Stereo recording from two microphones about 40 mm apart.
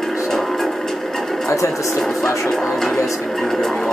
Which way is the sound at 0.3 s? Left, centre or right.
Centre.